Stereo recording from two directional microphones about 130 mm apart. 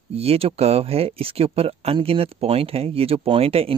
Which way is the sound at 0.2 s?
50° right (ahead or behind).